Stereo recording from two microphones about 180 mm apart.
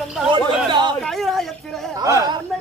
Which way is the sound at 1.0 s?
Centre (ahead or behind).